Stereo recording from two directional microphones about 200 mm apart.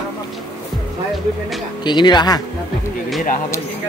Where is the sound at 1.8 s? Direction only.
20° left (ahead or behind).